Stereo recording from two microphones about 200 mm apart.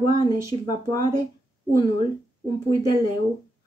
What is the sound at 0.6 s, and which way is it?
Speech, 20° left (ahead or behind).